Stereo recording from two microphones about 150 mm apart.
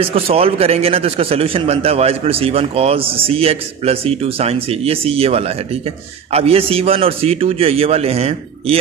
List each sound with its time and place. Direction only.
0.1 s a man's voice: 40° right (ahead or behind)